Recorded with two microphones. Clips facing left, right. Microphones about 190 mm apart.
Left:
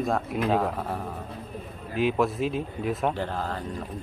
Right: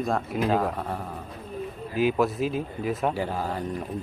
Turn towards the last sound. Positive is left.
turn(degrees=-10)  # may be behind; listen again after turning